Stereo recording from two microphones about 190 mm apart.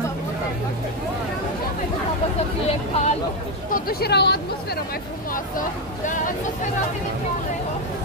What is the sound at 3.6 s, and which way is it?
Speech, 50° left (ahead or behind).